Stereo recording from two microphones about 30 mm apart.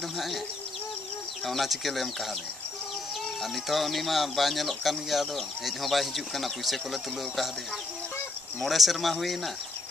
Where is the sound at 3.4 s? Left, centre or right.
Centre.